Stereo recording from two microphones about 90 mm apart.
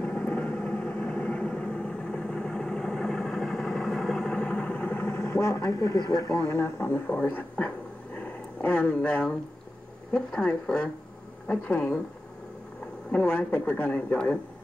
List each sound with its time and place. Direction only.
0.0 s vehicle: 15° left (ahead or behind); by 5.9 s 35° left (ahead or behind)
5.9 s speech: 45° left (ahead or behind)
6.4 s speech: 30° left (ahead or behind)
13.1 s speech: 15° left (ahead or behind)